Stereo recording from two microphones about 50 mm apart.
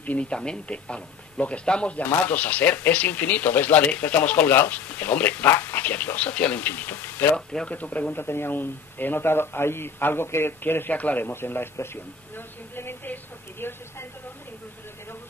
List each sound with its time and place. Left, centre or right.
0.0 s speech: left
0.3 s speech: centre; by 5.5 s left
5.5 s speech: left
6.6 s speech: left
7.3 s speech: centre
7.7 s speech: left
8.2 s speech: left
10.9 s speech: left
11.2 s speech: left